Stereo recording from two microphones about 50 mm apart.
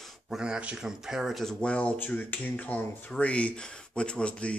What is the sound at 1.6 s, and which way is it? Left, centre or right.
Speech, left.